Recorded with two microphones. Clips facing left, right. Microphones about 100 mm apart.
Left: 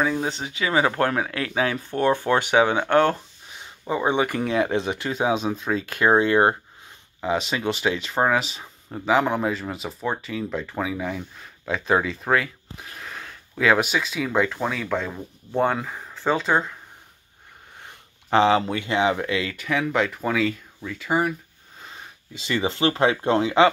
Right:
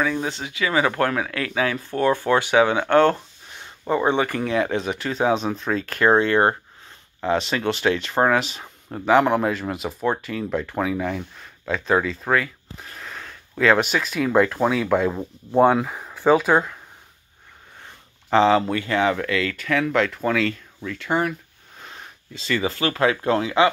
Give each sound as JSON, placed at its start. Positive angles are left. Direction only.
{"t": 0.0, "sound": "speech", "side_deg": 20}
{"t": 18.3, "sound": "speech", "side_deg": 20}
{"t": 21.8, "sound": "speech", "side_deg": 15}